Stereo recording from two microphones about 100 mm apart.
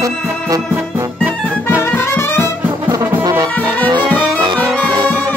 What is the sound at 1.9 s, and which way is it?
Music, 25° left (ahead or behind).